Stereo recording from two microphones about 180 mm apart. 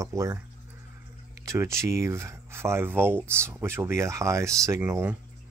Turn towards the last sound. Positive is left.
turn(degrees=-10)  # may be behind; listen again after turning